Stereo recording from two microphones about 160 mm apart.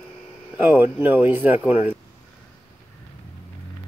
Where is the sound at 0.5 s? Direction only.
10° right (ahead or behind).